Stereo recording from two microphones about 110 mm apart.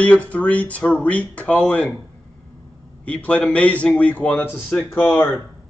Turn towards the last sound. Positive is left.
turn(degrees=0)  # may be behind; listen again after turning